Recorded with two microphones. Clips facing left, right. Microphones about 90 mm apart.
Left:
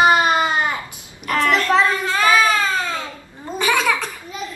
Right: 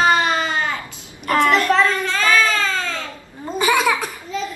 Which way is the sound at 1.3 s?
35° right (ahead or behind).